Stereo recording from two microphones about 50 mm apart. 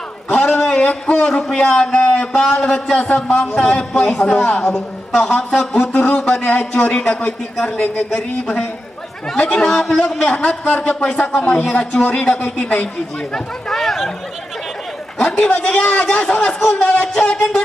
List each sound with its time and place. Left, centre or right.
0.3 s a man's voice: left
9.8 s a man's voice: left
13.7 s chatter: centre
15.1 s a man's voice: left